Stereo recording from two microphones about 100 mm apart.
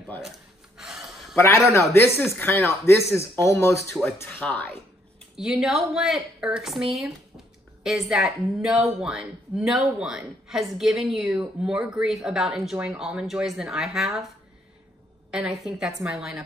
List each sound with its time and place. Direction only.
0.7 s gasp: 5° right (ahead or behind)
1.3 s speech: 25° left (ahead or behind)
5.3 s a woman's voice: 5° right (ahead or behind)
15.3 s a woman's voice: 5° right (ahead or behind)